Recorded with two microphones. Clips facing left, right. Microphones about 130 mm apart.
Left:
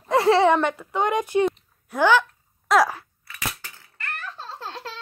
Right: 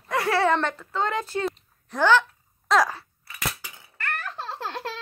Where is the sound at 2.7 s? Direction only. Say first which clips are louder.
Left 2 dB; 10° left (ahead or behind).